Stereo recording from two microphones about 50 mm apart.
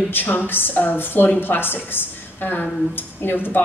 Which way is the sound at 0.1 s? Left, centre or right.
Left.